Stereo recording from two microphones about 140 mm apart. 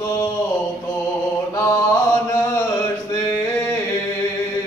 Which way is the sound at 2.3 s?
20° left (ahead or behind).